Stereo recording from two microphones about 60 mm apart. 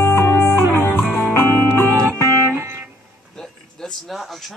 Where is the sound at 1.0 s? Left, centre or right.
Centre.